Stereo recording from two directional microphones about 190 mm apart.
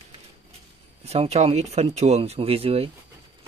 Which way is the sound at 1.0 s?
35° right (ahead or behind).